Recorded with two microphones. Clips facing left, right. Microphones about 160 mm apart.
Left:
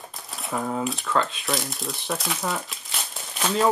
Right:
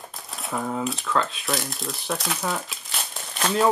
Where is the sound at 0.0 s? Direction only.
Centre (ahead or behind).